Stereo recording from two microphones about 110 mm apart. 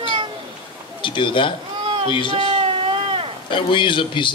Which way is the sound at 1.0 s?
50° left (ahead or behind).